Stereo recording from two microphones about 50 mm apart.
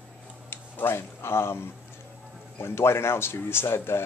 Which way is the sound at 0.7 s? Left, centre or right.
Left.